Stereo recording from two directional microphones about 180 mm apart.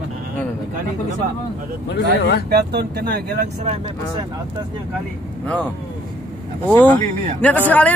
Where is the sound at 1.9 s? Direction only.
70° left (ahead or behind).